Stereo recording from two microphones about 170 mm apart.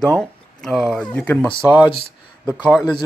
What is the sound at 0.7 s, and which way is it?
Speech, centre (ahead or behind).